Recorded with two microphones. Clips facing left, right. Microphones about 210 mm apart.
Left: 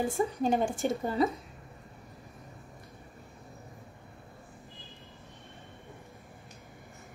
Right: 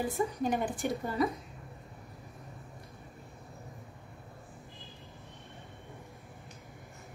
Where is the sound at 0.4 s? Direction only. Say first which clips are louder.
Left 3 dB; 25° left (ahead or behind).